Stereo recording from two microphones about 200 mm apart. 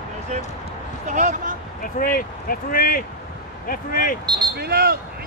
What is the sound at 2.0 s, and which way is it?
Speech, 45° left (ahead or behind).